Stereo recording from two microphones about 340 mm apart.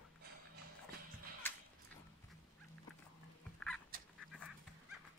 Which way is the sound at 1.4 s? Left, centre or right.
Centre.